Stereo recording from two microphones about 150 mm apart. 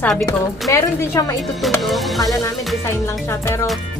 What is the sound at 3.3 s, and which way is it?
Speech, 20° left (ahead or behind).